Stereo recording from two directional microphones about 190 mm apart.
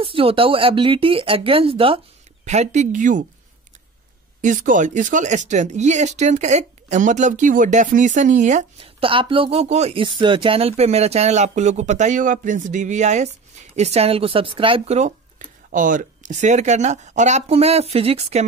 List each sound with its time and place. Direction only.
0.0 s speech: 30° right (ahead or behind)
4.4 s speech: 40° right (ahead or behind)